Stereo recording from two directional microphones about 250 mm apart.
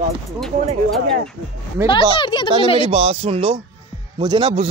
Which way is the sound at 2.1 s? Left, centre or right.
Centre.